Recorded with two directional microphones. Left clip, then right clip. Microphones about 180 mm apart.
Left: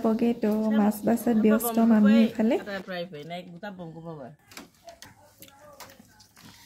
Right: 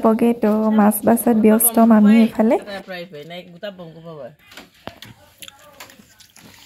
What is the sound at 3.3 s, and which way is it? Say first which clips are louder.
Speech: right 6 dB; 45° right (ahead or behind).